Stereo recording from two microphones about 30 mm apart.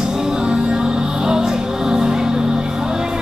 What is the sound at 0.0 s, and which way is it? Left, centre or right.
Music, centre.